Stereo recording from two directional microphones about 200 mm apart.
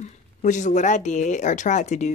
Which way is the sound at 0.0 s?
40° left (ahead or behind).